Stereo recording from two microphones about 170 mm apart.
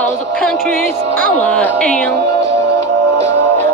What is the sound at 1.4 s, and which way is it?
Music, 10° left (ahead or behind).